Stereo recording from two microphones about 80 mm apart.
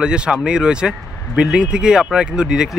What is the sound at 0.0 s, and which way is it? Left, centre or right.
Speech, centre.